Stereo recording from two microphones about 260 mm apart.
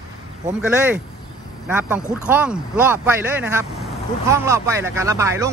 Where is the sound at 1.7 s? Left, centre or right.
Centre.